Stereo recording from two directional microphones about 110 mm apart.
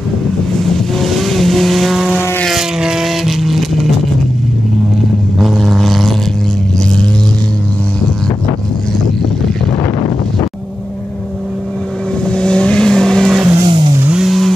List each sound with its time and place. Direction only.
0.7 s vehicle: centre (ahead or behind)
5.4 s vehicle: centre (ahead or behind)
12.3 s vehicle: 10° left (ahead or behind)
13.6 s vehicle: 50° right (ahead or behind)
14.1 s vehicle: centre (ahead or behind)